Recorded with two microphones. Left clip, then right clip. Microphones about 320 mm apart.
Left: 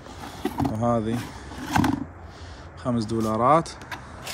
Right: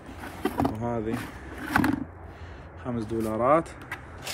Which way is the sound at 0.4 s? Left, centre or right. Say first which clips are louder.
Left 1 dB; centre.